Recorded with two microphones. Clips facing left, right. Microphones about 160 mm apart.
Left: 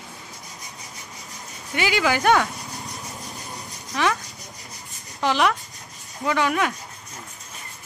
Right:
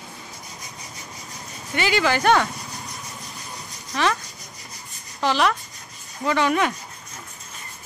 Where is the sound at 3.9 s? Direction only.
10° left (ahead or behind).